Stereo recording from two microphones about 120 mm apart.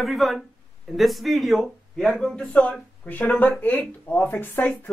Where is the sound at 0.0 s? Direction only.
Centre (ahead or behind).